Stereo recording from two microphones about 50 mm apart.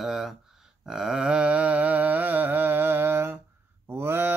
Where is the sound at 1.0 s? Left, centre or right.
Centre.